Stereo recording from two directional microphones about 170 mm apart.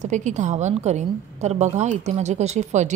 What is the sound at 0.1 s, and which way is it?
A woman's voice, 45° right (ahead or behind).